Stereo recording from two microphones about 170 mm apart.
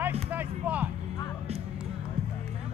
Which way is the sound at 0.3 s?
10° right (ahead or behind).